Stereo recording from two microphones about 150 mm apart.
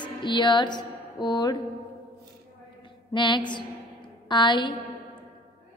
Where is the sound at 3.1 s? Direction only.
30° left (ahead or behind).